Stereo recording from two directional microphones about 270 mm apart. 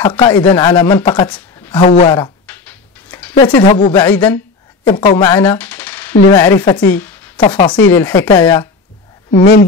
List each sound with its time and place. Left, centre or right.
0.0 s speech: centre
2.4 s a sound: centre
3.4 s speech: centre
4.8 s speech: centre
9.4 s speech: left